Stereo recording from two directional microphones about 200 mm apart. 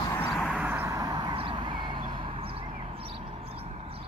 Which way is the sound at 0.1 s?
5° left (ahead or behind).